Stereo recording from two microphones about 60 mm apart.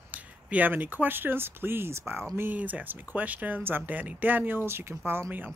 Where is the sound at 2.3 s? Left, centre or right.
Right.